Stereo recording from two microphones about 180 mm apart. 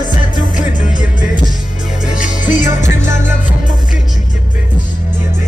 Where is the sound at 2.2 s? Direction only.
45° left (ahead or behind).